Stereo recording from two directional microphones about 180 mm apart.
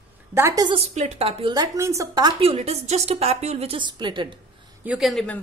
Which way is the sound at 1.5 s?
20° right (ahead or behind).